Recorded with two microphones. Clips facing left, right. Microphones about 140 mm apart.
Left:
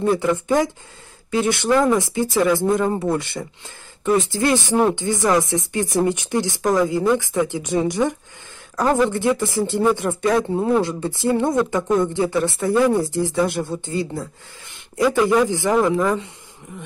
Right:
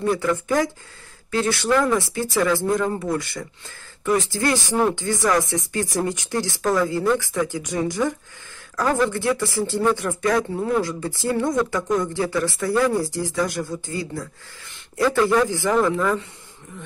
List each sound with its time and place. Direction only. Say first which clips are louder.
0.0 s speech: left 3 dB; 20° left (ahead or behind)
15.0 s speech: left 2 dB; 15° left (ahead or behind)